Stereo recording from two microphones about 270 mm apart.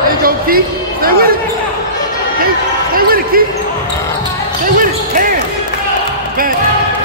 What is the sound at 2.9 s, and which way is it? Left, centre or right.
Basketball bounce, right.